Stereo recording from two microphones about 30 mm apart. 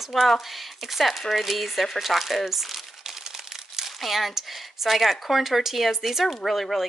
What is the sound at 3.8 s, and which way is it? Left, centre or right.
Speech, centre.